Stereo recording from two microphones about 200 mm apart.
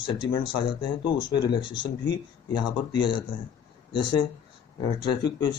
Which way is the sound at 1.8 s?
65° left (ahead or behind).